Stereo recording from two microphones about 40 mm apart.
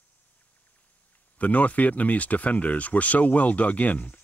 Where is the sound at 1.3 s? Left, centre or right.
Left.